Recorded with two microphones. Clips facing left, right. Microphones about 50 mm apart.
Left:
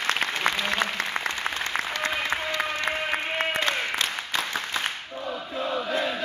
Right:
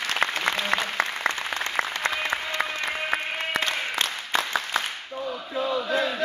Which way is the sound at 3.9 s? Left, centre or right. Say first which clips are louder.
Right 2 dB; right.